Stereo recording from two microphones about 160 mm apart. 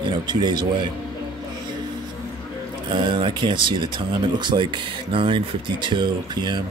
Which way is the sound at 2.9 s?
30° right (ahead or behind).